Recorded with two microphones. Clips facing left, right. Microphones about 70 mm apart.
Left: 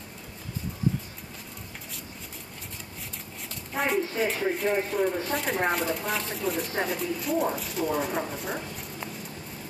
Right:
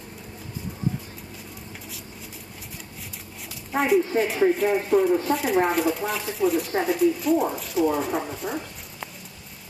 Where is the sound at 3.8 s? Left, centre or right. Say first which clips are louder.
Right 6 dB; centre.